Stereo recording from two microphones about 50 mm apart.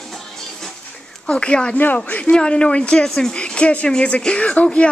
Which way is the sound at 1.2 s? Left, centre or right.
Centre.